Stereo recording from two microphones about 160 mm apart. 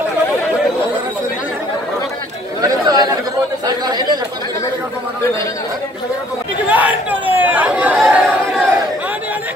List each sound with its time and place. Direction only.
2.6 s chatter: 25° right (ahead or behind)
3.6 s speech: 25° right (ahead or behind)
6.7 s chatter: 10° right (ahead or behind)